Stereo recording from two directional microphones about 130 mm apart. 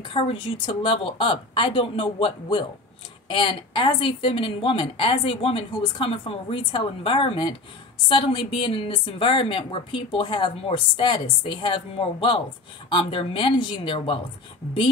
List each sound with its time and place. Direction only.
0.0 s a woman's voice: 45° left (ahead or behind)